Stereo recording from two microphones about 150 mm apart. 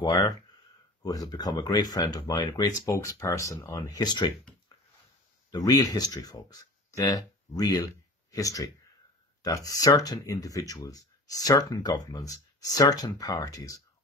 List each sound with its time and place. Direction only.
0.0 s speech: 25° left (ahead or behind)
5.5 s speech: 25° left (ahead or behind)